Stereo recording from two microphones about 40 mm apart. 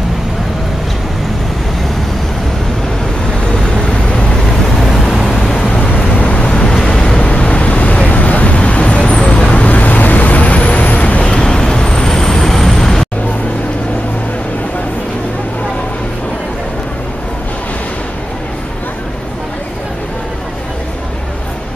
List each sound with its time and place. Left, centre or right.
4.7 s vehicle: centre
5.6 s vehicle: left
6.9 s waves: left
7.2 s vehicle: left
11.4 s vehicle: left